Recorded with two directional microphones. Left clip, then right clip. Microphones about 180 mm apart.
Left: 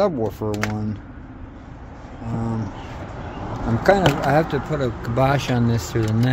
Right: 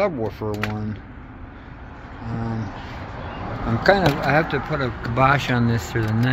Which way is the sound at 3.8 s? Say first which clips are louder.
Left 1 dB; 20° left (ahead or behind).